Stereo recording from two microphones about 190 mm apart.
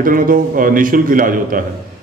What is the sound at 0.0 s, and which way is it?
A man's voice, 45° right (ahead or behind).